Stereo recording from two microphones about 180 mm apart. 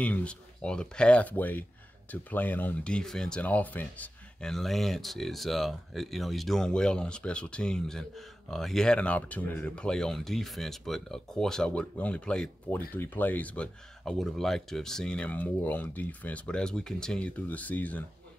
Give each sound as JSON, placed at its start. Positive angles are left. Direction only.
{"t": 0.0, "sound": "speech", "side_deg": 5}